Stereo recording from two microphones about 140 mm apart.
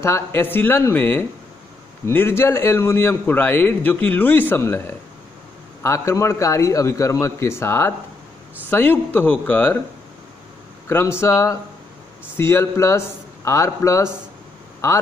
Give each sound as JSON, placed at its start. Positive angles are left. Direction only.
{"t": 0.0, "sound": "a man's voice", "side_deg": 20}
{"t": 10.9, "sound": "a man's voice", "side_deg": 20}